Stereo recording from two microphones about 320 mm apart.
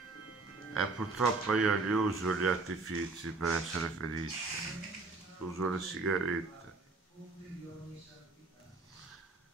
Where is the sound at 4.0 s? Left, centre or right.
Right.